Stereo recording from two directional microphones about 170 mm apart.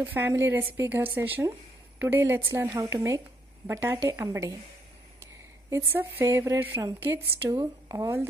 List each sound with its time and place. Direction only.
0.0 s speech: 15° right (ahead or behind)
5.7 s speech: 15° right (ahead or behind)